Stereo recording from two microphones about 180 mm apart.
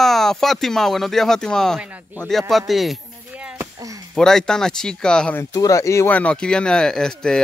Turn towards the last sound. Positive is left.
turn(degrees=5)  # may be behind; listen again after turning